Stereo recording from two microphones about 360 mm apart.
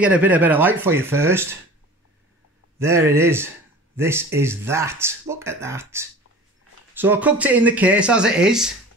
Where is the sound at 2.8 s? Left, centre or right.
Centre.